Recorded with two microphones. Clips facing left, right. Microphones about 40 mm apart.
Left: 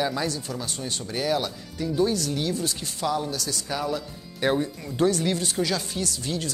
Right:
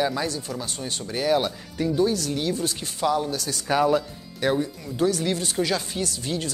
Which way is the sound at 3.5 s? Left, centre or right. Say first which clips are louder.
Right 7 dB; right.